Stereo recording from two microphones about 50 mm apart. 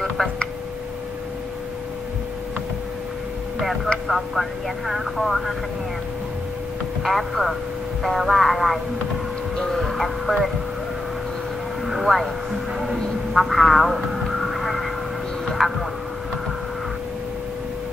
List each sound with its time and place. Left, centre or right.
3.5 s speech: centre
7.0 s speech: centre
11.8 s speech: centre
15.4 s a sound: centre